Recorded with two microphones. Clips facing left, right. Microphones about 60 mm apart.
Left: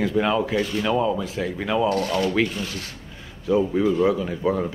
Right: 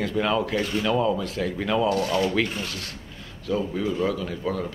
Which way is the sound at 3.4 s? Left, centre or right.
Centre.